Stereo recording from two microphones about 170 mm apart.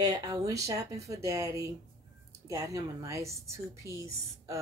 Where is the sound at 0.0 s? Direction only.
20° right (ahead or behind).